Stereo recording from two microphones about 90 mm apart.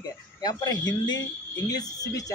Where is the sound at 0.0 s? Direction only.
50° left (ahead or behind).